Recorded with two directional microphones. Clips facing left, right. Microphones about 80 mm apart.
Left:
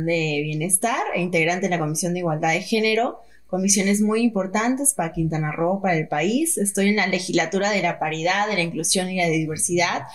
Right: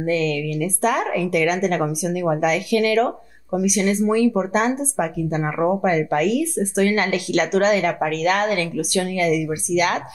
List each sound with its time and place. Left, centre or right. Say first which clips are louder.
0.1 s speech: right 3 dB; right